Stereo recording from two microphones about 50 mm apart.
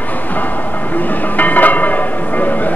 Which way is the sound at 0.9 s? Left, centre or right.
Left.